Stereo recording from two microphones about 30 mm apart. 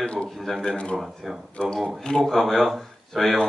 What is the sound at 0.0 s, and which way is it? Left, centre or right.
Speech, left.